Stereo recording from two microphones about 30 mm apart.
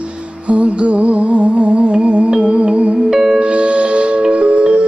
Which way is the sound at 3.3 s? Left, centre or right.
Right.